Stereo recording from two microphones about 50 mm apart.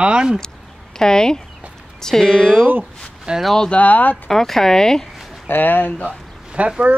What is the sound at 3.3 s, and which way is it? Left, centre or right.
Speech, centre.